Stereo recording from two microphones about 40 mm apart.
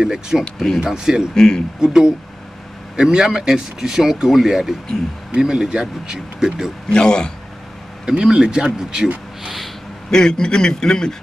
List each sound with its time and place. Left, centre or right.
0.0 s speech: centre
1.3 s a man's voice: centre
1.8 s speech: centre
6.9 s a man's voice: left
8.0 s speech: right
10.1 s a man's voice: centre